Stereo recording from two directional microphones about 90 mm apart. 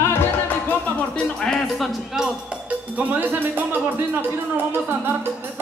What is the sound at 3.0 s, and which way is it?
Music, 20° right (ahead or behind).